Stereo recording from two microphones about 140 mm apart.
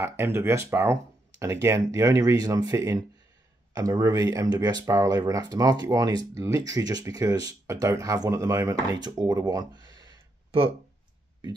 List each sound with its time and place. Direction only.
0.0 s speech: 15° right (ahead or behind); by 10.7 s 35° right (ahead or behind)